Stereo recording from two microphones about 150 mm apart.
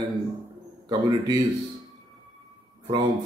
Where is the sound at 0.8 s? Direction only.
25° right (ahead or behind).